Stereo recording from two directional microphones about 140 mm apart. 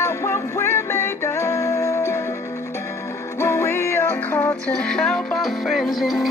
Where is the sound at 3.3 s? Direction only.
20° left (ahead or behind); by 6.3 s centre (ahead or behind).